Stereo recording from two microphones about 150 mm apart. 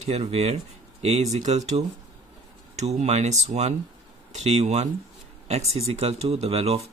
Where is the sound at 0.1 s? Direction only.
45° right (ahead or behind).